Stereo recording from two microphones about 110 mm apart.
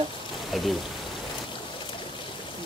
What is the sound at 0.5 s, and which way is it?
Speech, centre (ahead or behind).